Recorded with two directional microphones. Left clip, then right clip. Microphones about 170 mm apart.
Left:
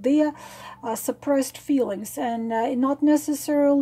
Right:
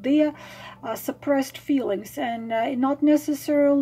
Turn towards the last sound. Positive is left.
turn(degrees=35)  # may be behind; listen again after turning